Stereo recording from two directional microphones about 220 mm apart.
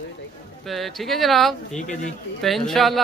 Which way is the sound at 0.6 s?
Centre (ahead or behind).